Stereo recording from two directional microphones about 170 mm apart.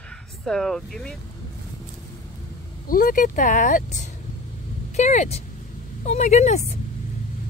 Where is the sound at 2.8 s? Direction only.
55° left (ahead or behind).